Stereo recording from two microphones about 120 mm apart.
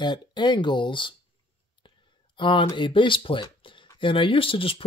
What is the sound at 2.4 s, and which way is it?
Speech, 40° left (ahead or behind).